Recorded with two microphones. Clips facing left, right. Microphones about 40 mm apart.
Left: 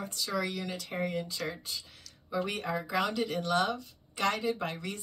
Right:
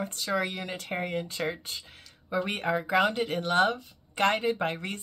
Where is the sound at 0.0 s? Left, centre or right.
Right.